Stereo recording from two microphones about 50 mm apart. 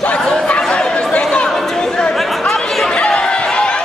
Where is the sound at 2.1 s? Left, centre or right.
Centre.